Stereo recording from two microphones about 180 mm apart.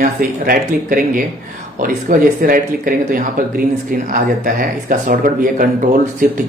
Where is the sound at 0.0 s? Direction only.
50° right (ahead or behind).